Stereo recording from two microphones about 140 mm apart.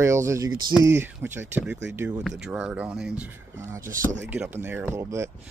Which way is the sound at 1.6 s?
5° right (ahead or behind).